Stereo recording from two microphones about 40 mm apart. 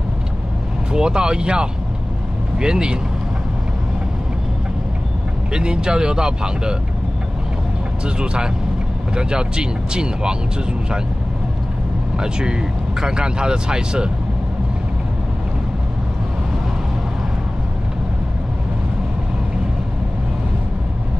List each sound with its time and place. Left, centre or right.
0.9 s speech: centre
5.5 s speech: right
8.0 s speech: right
12.2 s speech: right